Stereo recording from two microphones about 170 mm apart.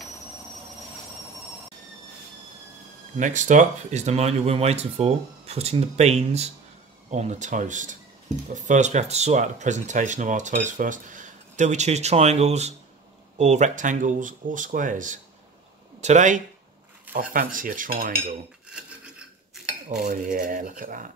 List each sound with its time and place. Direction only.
3.2 s speech: 45° right (ahead or behind)
17.1 s speech: 55° right (ahead or behind)
18.7 s filing: 5° right (ahead or behind)
20.1 s speech: 50° right (ahead or behind)